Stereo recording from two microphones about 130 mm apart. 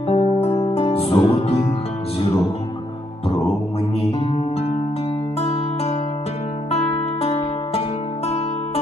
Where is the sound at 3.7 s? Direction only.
45° left (ahead or behind).